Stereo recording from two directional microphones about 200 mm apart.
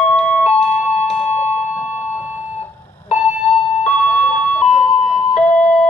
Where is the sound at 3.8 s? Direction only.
35° left (ahead or behind).